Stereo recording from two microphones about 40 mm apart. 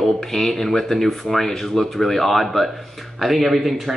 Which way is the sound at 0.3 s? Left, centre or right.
Centre.